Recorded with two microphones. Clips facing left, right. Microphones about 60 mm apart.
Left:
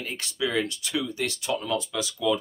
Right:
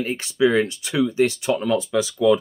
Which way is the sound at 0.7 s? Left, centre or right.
Right.